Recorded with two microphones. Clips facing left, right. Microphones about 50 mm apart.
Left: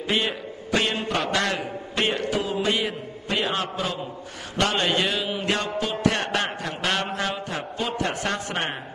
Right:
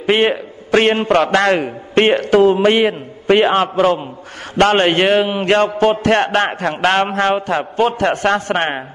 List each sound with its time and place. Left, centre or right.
0.0 s a man's voice: right